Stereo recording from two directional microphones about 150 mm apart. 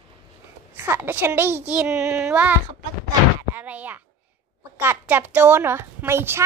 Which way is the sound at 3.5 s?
10° right (ahead or behind).